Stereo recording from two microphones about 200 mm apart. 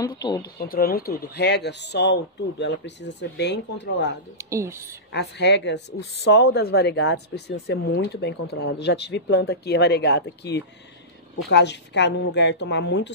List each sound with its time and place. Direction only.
0.0 s speech: 20° left (ahead or behind)
0.6 s speech: 45° left (ahead or behind)
4.4 s speech: 15° right (ahead or behind)
5.1 s speech: 60° left (ahead or behind)